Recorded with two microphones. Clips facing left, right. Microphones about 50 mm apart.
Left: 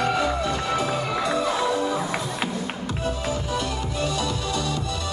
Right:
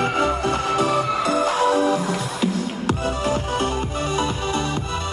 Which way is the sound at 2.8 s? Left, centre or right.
Right.